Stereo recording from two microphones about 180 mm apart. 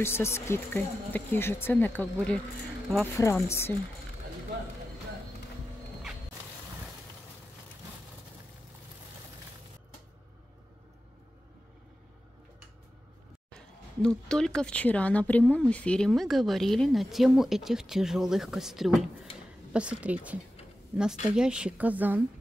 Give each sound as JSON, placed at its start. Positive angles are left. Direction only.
{"t": 0.0, "sound": "speech", "side_deg": 15}
{"t": 14.0, "sound": "a woman's voice", "side_deg": 5}